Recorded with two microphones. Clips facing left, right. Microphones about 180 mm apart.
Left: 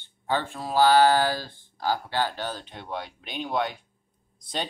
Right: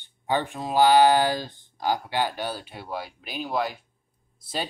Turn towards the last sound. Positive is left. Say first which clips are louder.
# right 1 dB
turn(degrees=-5)  # may be behind; listen again after turning